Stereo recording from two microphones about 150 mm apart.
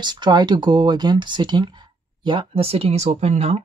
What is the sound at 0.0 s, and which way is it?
Speech, 30° right (ahead or behind).